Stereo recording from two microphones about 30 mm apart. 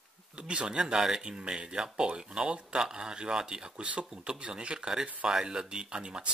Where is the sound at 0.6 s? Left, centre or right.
Right.